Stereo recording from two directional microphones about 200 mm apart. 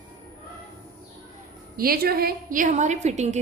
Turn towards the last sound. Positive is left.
turn(degrees=-35)  # may be behind; listen again after turning